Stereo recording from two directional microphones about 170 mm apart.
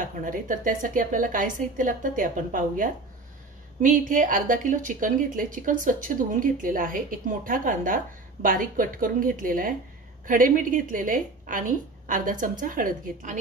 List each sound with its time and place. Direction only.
0.2 s a woman's voice: 50° right (ahead or behind)